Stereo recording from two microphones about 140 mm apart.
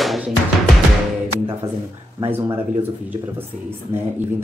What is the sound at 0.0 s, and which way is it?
Music, centre (ahead or behind).